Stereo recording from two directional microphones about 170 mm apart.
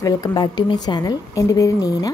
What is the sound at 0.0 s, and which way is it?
A woman's voice, 25° left (ahead or behind).